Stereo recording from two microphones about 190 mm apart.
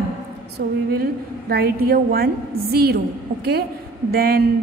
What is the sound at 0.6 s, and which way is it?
A woman's voice, 55° right (ahead or behind).